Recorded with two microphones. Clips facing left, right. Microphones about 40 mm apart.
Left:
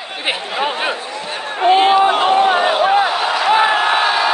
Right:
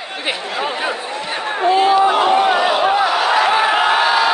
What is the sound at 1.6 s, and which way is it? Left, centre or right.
Speech, left.